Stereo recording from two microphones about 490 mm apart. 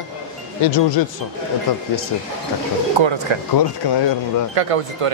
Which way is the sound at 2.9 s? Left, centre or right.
Right.